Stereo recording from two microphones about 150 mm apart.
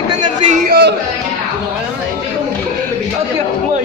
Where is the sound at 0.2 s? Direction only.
55° right (ahead or behind).